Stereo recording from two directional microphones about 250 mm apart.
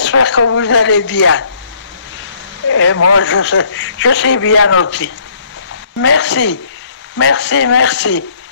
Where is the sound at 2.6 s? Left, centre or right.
Left.